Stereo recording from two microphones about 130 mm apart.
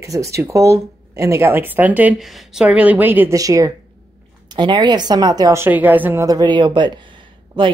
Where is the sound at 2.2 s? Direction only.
Centre (ahead or behind).